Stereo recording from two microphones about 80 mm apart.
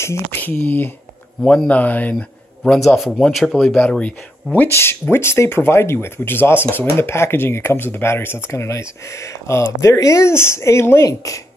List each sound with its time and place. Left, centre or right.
0.0 s speech: left
0.4 s speech: left
1.4 s speech: centre
1.7 s speech: centre
2.6 s speech: centre
4.7 s speech: left